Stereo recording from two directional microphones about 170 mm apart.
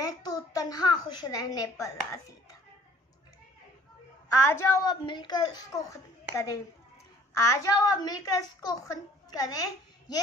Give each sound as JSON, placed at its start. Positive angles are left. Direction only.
{"t": 0.0, "sound": "a child's voice", "side_deg": 20}
{"t": 4.4, "sound": "a woman's voice", "side_deg": 15}
{"t": 5.0, "sound": "a woman's voice", "side_deg": 25}